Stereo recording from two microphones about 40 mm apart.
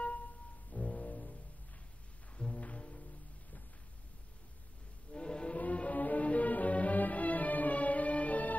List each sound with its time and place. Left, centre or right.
0.0 s music: left
2.3 s music: left
5.1 s music: left
5.6 s music: left